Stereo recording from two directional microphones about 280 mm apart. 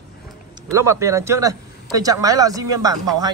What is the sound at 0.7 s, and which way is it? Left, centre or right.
Speech, centre.